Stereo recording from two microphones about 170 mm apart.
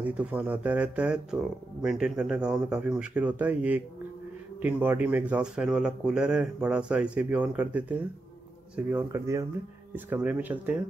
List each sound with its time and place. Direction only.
0.0 s speech: 10° right (ahead or behind)